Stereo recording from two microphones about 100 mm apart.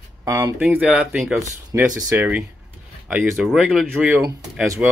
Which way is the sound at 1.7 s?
20° right (ahead or behind).